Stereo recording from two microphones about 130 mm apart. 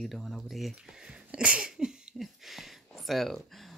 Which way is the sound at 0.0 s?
Centre (ahead or behind).